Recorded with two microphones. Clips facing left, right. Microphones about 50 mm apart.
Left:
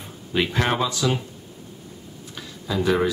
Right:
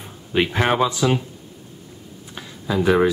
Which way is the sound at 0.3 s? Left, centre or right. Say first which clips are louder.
Right 3 dB; centre.